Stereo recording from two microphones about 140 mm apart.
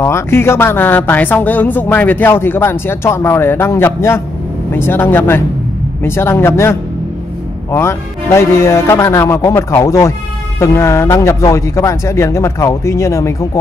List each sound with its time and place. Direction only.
0.0 s speech: 20° left (ahead or behind)